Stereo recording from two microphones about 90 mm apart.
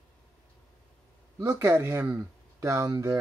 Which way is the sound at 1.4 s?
30° right (ahead or behind).